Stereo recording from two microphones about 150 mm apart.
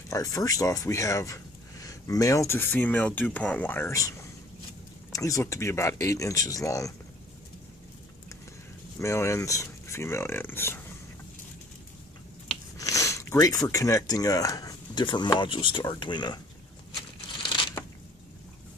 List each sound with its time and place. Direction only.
0.1 s speech: 20° left (ahead or behind)
8.9 s speech: 20° left (ahead or behind)
12.7 s speech: 20° left (ahead or behind)